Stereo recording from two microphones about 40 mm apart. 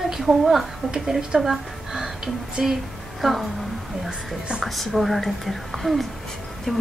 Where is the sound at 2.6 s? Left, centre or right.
Right.